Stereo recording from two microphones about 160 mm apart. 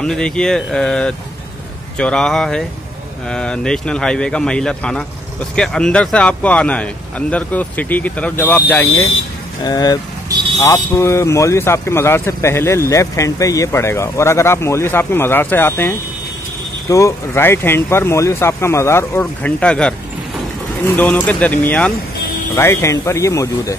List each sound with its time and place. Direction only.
0.0 s a man's voice: 5° left (ahead or behind)